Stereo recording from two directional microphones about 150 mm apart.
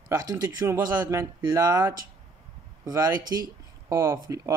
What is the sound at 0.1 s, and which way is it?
Speech, 20° right (ahead or behind).